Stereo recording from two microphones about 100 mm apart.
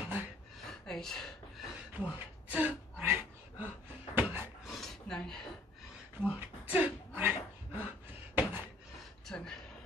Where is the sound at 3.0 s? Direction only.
25° right (ahead or behind).